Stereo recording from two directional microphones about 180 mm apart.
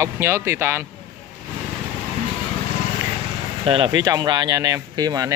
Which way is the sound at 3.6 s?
30° right (ahead or behind).